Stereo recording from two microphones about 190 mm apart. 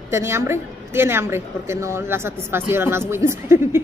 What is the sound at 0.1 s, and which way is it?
A woman's voice, 15° right (ahead or behind).